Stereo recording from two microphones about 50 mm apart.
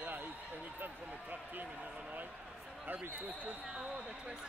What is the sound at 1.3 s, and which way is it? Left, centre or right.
Speech, right.